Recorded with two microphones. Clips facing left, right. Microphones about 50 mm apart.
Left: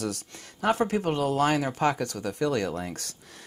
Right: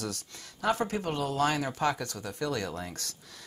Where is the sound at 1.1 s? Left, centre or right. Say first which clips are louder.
Left 3 dB; left.